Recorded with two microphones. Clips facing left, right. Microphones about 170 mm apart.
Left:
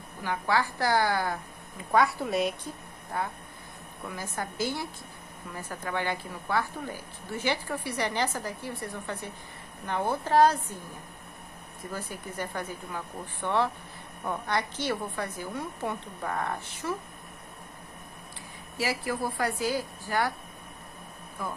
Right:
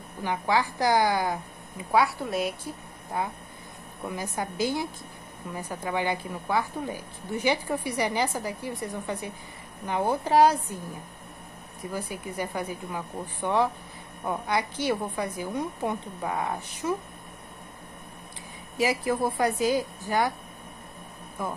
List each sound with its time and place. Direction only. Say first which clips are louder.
0.2 s a woman's voice: right 2 dB; 20° right (ahead or behind)
1.9 s a woman's voice: right 1 dB; 5° right (ahead or behind)
3.1 s a woman's voice: right 2 dB; 15° right (ahead or behind)
11.9 s a woman's voice: right 4 dB; 10° right (ahead or behind)
18.8 s speech: right 5 dB; 20° right (ahead or behind)
21.4 s speech: right 3 dB; 20° right (ahead or behind)